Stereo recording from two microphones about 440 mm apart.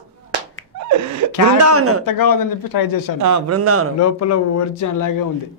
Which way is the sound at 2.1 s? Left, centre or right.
Left.